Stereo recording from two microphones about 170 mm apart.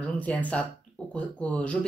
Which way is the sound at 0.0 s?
10° left (ahead or behind).